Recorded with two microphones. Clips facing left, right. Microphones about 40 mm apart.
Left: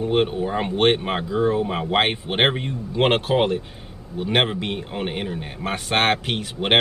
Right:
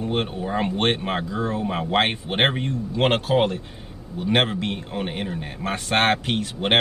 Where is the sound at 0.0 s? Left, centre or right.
Centre.